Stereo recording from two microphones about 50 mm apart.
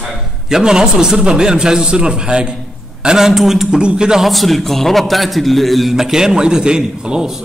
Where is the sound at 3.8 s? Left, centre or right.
Centre.